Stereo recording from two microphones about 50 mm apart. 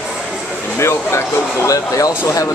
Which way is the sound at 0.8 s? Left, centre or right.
Left.